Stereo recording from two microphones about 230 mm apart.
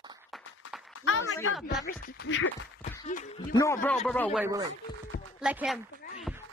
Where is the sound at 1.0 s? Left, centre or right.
Left.